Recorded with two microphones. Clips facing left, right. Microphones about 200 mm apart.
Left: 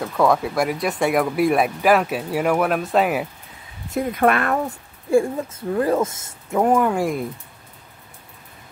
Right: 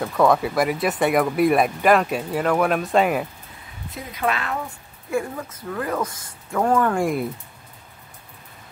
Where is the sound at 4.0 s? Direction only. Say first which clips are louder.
Left 7 dB; 55° left (ahead or behind).